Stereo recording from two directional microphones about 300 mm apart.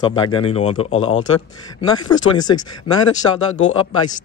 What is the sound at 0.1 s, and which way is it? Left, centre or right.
Speech, centre.